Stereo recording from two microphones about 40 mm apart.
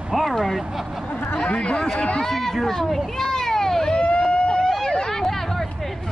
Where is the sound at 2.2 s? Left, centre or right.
Centre.